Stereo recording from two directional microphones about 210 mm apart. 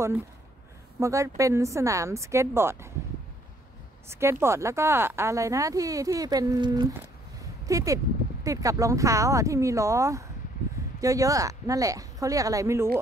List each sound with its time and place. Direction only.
0.9 s speech: 15° right (ahead or behind)
4.1 s speech: 10° right (ahead or behind)